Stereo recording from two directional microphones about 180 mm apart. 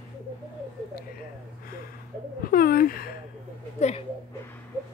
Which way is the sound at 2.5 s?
55° left (ahead or behind).